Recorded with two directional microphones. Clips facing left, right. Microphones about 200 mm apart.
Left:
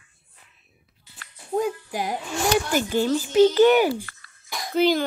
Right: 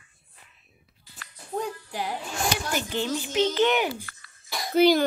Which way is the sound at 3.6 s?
5° left (ahead or behind).